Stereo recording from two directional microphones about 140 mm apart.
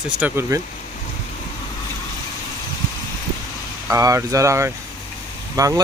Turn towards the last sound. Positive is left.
turn(degrees=-25)  # may be behind; listen again after turning